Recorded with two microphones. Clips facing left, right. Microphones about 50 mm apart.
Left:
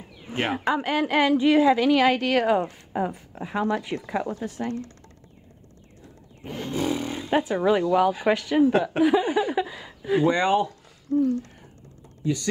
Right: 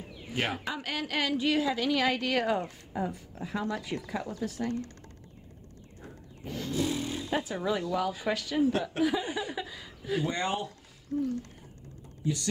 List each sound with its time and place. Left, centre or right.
0.3 s a woman's voice: left
6.4 s speech: left